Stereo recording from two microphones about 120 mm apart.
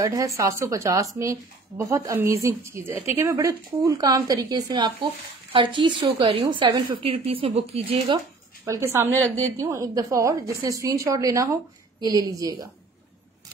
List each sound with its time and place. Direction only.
0.0 s a woman's voice: 30° right (ahead or behind); by 6.3 s 50° right (ahead or behind)
6.5 s speech: 40° right (ahead or behind)
7.1 s speech: 50° right (ahead or behind)
8.6 s a woman's voice: 25° right (ahead or behind)